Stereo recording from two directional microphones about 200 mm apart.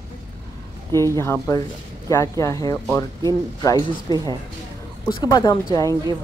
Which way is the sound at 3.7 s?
20° right (ahead or behind).